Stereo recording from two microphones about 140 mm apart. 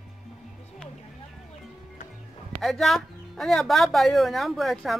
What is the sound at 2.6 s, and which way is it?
A woman's voice, centre (ahead or behind).